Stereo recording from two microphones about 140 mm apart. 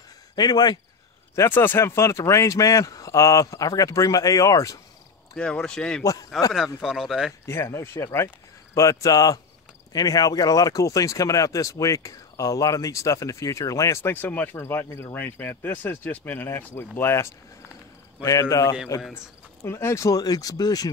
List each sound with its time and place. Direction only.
0.4 s speech: 30° left (ahead or behind)
1.3 s speech: 20° left (ahead or behind)
5.3 s speech: 5° left (ahead or behind)
7.4 s speech: 20° left (ahead or behind)